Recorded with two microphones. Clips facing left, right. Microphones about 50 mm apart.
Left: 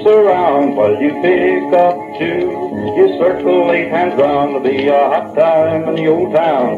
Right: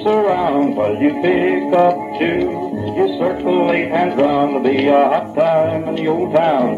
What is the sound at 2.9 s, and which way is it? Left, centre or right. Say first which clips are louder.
Music: left 6 dB; left.